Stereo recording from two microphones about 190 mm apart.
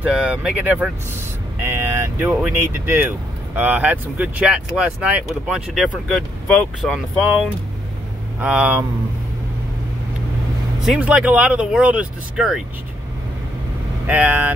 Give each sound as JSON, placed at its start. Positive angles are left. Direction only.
{"t": 0.0, "sound": "speech", "side_deg": -5}
{"t": 8.4, "sound": "speech", "side_deg": -5}
{"t": 10.8, "sound": "speech", "side_deg": -5}
{"t": 14.0, "sound": "speech", "side_deg": -10}